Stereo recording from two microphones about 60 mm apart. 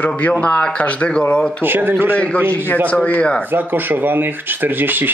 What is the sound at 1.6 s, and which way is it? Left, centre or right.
Speech, right.